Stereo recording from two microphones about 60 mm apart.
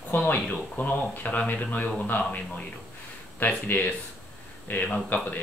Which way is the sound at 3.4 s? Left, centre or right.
Left.